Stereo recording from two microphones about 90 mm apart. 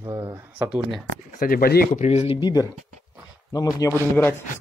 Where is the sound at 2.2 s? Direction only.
75° left (ahead or behind).